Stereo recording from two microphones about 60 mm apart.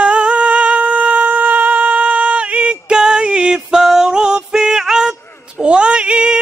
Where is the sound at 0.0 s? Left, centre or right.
Right.